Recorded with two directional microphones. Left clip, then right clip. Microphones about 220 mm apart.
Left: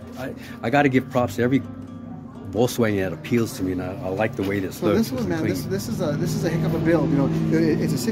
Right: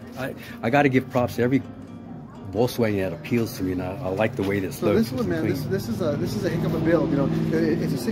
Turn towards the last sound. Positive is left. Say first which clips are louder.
# left 2 dB
turn(degrees=50)  # may be behind; listen again after turning